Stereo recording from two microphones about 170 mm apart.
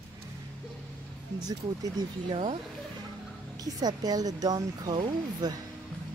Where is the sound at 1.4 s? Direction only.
20° right (ahead or behind).